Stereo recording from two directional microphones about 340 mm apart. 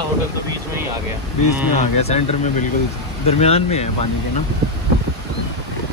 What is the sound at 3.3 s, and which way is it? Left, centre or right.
Speech, centre.